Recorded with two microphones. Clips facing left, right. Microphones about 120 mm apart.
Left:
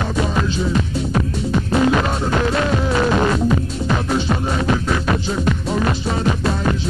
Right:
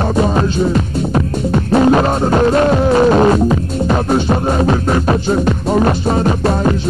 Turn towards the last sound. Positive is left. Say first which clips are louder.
# right 6 dB
turn(degrees=-45)  # may be behind; listen again after turning